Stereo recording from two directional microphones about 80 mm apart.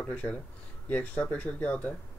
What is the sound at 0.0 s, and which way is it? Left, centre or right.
Speech, centre.